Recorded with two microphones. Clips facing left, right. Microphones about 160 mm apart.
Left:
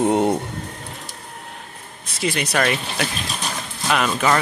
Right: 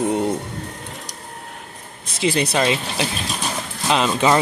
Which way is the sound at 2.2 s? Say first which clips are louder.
Right 2 dB; 30° right (ahead or behind).